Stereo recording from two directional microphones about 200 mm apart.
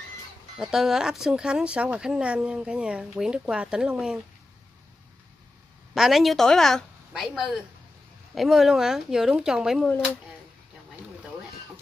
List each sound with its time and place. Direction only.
0.6 s speech: centre (ahead or behind)
5.9 s speech: centre (ahead or behind)